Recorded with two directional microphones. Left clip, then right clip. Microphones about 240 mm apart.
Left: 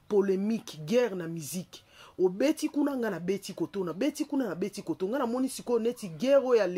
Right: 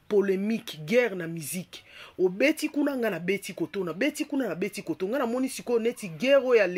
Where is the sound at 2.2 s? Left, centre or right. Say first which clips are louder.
Right 3 dB; centre.